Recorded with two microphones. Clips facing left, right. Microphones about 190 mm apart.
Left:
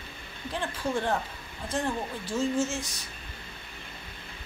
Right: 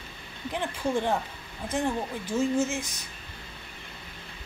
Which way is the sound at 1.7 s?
15° right (ahead or behind).